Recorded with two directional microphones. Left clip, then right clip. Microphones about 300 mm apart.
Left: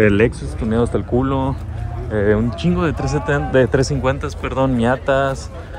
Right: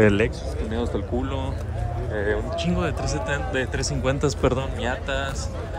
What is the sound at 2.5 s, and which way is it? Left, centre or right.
Speech, centre.